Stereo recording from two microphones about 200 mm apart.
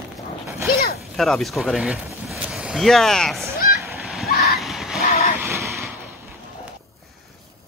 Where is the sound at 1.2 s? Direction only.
Centre (ahead or behind).